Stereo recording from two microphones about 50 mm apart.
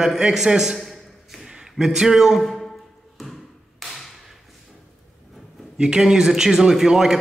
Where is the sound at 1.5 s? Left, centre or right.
Centre.